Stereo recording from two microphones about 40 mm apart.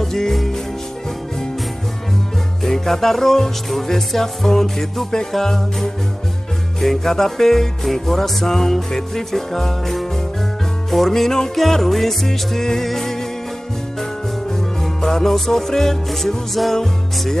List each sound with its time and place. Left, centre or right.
0.0 s music: centre
2.6 s music: centre
14.5 s music: centre